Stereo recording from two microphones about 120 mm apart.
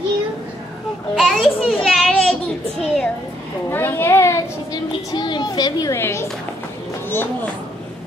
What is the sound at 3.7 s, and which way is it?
A child's voice, 20° left (ahead or behind).